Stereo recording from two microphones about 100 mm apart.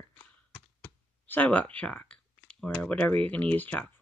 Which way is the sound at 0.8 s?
20° left (ahead or behind).